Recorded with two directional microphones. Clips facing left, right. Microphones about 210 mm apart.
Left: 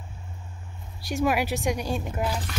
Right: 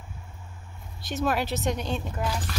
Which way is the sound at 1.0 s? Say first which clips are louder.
Left 2 dB; 15° left (ahead or behind).